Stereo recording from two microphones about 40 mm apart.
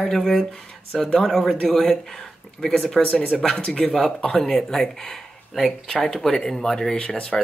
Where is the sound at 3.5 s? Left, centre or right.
Left.